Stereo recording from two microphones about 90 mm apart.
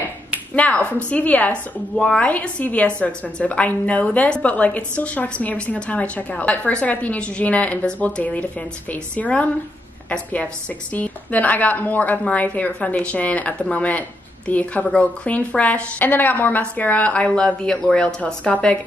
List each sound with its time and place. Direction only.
0.6 s a woman's voice: 15° left (ahead or behind)